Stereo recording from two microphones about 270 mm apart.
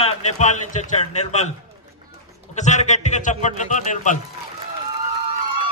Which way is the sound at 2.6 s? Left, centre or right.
Left.